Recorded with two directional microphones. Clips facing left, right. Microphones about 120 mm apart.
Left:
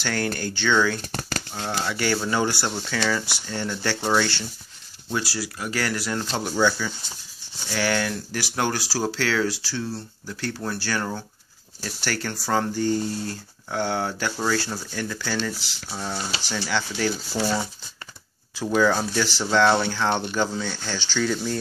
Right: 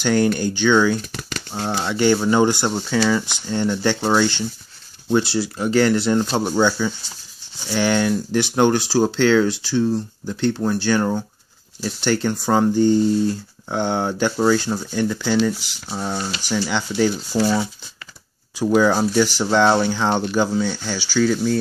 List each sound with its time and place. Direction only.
0.0 s speech: 15° right (ahead or behind)
1.5 s speech: 30° right (ahead or behind); by 4.4 s 10° right (ahead or behind)
5.1 s speech: 25° right (ahead or behind)
18.8 s speech: 15° right (ahead or behind)